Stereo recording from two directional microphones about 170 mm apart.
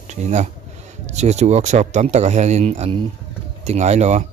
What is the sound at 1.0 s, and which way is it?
A man's voice, 40° right (ahead or behind).